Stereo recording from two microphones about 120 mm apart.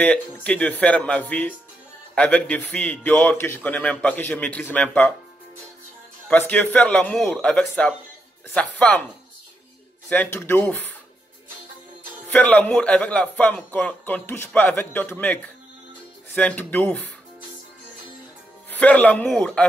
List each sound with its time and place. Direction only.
0.0 s a man's voice: 10° left (ahead or behind)
6.3 s a man's voice: 15° left (ahead or behind)
10.0 s a man's voice: 10° left (ahead or behind)
12.3 s a man's voice: 10° left (ahead or behind)
16.3 s a man's voice: 10° left (ahead or behind)
18.7 s a man's voice: 10° left (ahead or behind)